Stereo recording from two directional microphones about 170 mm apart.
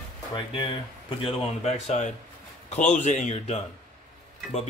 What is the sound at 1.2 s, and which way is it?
Speech, 40° left (ahead or behind).